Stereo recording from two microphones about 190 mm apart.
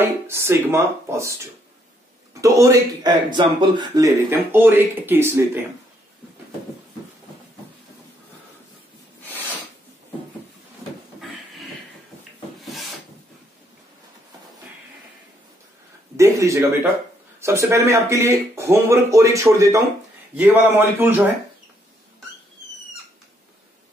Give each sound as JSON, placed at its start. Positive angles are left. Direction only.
{"t": 0.0, "sound": "speech", "side_deg": -15}
{"t": 12.6, "sound": "rub", "side_deg": 0}
{"t": 16.2, "sound": "speech", "side_deg": -15}